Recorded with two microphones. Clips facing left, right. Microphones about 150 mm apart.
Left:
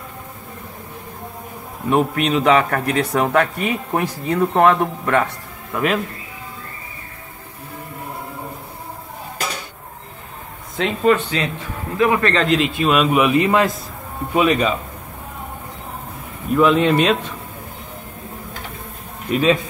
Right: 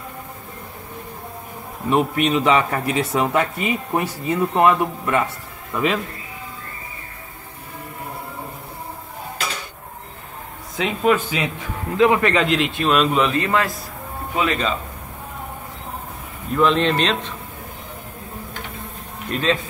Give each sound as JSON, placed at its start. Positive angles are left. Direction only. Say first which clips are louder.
{"t": 1.9, "sound": "speech", "louder": "left 1 dB", "side_deg": 0}
{"t": 10.8, "sound": "a man's voice", "louder": "left 2 dB", "side_deg": -5}
{"t": 12.4, "sound": "a man's voice", "louder": "left 2 dB", "side_deg": 0}
{"t": 16.5, "sound": "a man's voice", "louder": "left 3 dB", "side_deg": 5}
{"t": 19.3, "sound": "a man's voice", "louder": "left 5 dB", "side_deg": 10}